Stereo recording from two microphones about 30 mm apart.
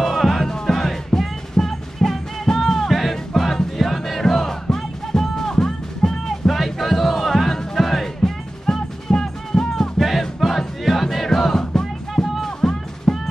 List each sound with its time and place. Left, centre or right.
0.0 s music: centre
8.2 s music: centre
9.7 s music: centre
12.4 s music: left